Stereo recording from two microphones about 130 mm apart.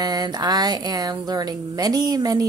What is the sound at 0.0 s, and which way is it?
Speech, 30° right (ahead or behind).